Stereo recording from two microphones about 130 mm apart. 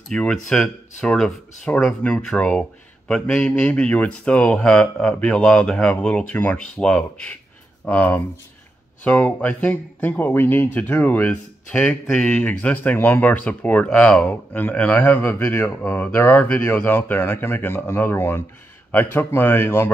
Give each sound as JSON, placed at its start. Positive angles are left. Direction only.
{"t": 0.1, "sound": "speech", "side_deg": 5}